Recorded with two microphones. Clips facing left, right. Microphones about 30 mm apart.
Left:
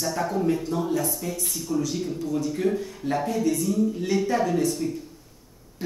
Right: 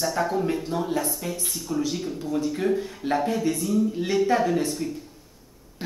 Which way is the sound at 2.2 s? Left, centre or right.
Centre.